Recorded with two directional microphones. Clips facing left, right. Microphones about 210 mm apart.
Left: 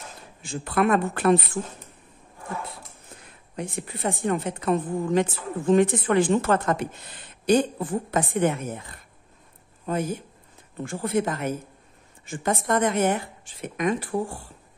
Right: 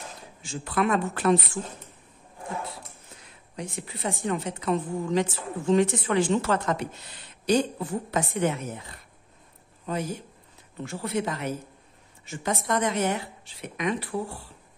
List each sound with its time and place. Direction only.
0.4 s speech: 55° left (ahead or behind)
3.5 s a woman's voice: 55° left (ahead or behind)
9.8 s a woman's voice: 50° left (ahead or behind)